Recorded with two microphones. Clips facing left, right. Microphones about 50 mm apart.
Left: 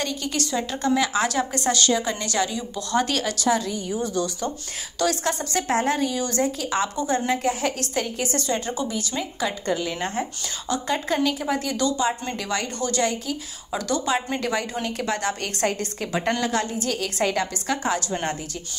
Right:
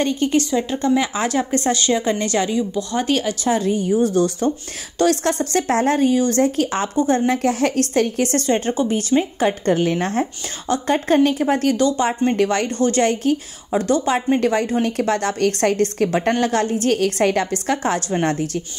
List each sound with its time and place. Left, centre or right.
0.0 s a woman's voice: right
0.4 s speech: centre
3.4 s a woman's voice: right
3.7 s a woman's voice: right
7.0 s a woman's voice: right
7.2 s a woman's voice: right
10.7 s a woman's voice: right
13.0 s a woman's voice: right
13.7 s a woman's voice: right
14.0 s a woman's voice: right